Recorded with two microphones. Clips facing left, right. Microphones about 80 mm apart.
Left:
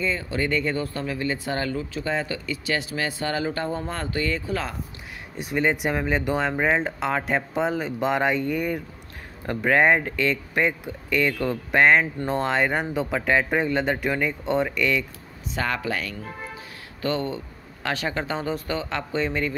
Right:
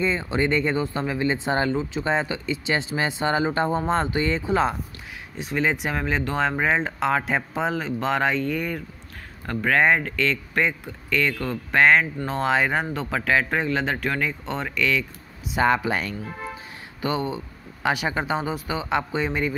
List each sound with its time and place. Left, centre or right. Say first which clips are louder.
0.0 s speech: right 3 dB; right
5.4 s speech: left 1 dB; centre
12.3 s speech: right 1 dB; centre
15.5 s speech: right 6 dB; right
17.0 s speech: even; centre